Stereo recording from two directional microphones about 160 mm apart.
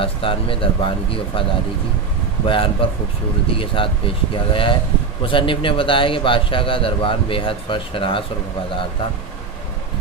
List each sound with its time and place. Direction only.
0.0 s a man's voice: 35° left (ahead or behind)
2.4 s a man's voice: 35° left (ahead or behind)